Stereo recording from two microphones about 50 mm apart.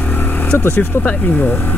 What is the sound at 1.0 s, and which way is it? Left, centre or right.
Speech, left.